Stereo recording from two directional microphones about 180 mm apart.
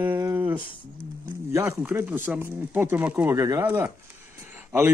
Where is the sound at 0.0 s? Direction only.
10° right (ahead or behind).